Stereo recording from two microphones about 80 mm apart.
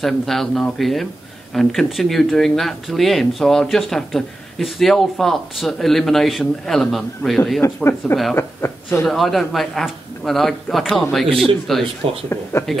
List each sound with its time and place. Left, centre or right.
0.0 s speech: centre
7.6 s speech: left
9.0 s speech: centre
12.0 s speech: right
12.5 s speech: left